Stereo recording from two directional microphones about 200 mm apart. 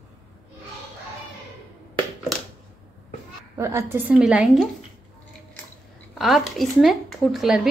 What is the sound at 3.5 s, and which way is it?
A woman's voice, 15° right (ahead or behind).